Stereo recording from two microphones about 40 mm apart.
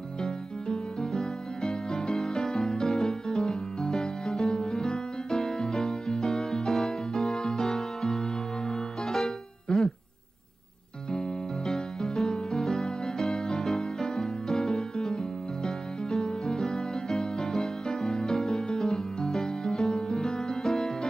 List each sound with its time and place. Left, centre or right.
0.2 s music: centre
11.1 s music: left
11.7 s music: centre